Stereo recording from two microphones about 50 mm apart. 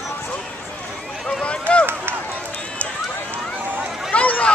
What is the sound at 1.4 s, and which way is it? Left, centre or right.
Run, left.